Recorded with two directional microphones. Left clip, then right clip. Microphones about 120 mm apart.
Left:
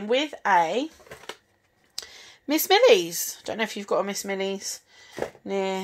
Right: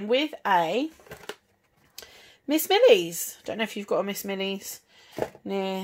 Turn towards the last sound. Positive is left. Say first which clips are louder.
# left 2 dB
turn(degrees=-15)  # may be behind; listen again after turning